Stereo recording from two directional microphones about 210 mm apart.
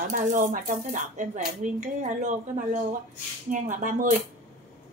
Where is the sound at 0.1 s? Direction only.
35° right (ahead or behind).